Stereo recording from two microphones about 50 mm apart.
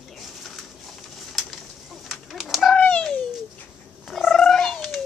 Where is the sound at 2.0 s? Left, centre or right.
Centre.